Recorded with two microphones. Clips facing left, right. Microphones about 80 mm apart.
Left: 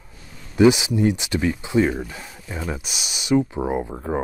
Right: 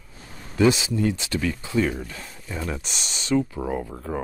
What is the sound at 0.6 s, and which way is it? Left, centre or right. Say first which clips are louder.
Speech: left 4 dB; centre.